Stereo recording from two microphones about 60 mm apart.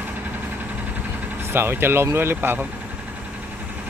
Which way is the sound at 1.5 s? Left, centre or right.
Right.